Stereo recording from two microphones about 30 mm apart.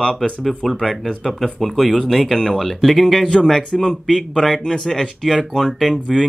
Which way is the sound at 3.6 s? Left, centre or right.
Left.